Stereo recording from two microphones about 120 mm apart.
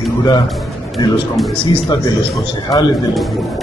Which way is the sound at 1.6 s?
45° left (ahead or behind).